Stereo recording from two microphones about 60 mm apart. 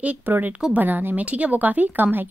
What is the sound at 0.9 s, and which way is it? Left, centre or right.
Speech, right.